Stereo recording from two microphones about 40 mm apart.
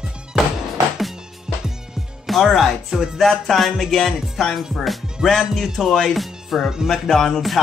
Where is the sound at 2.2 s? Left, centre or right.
Centre.